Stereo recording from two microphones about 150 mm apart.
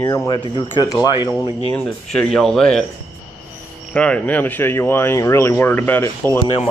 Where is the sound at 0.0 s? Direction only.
20° left (ahead or behind).